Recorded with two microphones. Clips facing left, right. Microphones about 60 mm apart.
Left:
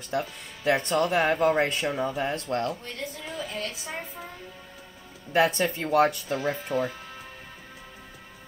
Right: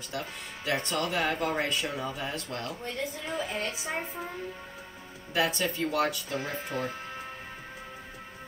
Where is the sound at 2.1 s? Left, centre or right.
Left.